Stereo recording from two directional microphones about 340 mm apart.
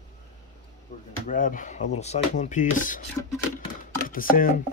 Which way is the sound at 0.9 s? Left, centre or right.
Left.